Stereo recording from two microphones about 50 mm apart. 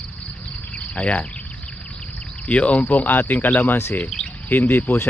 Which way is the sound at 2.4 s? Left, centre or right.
Left.